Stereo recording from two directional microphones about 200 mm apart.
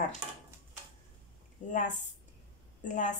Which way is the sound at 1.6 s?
40° left (ahead or behind).